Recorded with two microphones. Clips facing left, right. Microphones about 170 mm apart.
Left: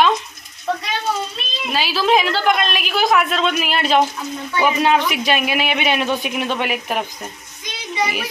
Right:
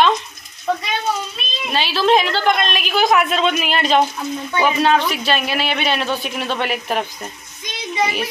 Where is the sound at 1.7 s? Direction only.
5° left (ahead or behind).